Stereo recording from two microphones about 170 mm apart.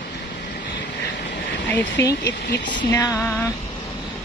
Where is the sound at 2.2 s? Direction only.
80° left.